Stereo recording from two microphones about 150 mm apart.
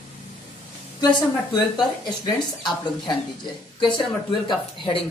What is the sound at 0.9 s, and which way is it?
Speech, 30° left (ahead or behind).